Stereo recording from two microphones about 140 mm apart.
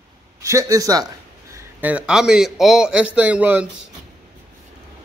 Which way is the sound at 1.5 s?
10° right (ahead or behind).